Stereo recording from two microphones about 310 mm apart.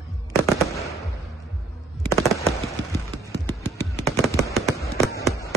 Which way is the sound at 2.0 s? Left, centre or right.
Centre.